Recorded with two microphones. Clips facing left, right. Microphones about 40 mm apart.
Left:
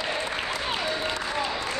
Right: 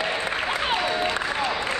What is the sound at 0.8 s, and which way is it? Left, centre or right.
Applause, right.